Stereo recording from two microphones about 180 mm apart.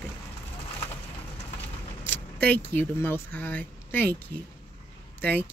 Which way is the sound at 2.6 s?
10° left (ahead or behind).